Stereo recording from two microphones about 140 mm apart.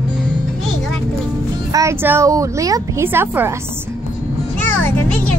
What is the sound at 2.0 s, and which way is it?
A woman's voice, 20° right (ahead or behind).